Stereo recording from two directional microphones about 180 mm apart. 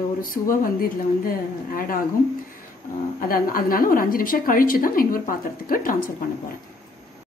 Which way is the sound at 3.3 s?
55° left (ahead or behind).